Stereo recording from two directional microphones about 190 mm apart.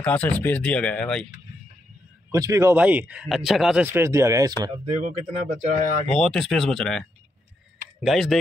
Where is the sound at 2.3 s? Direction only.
15° right (ahead or behind).